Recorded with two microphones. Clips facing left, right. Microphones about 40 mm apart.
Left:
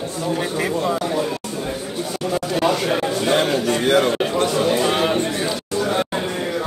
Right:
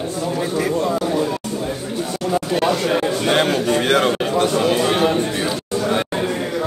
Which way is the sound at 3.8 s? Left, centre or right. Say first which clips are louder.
Left 1 dB; right.